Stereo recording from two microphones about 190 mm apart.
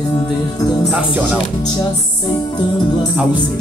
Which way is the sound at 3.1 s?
5° right (ahead or behind).